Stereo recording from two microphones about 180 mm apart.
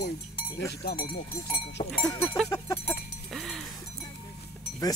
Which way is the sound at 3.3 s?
Centre (ahead or behind).